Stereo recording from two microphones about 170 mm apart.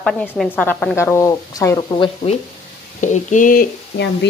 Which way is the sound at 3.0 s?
50° left (ahead or behind).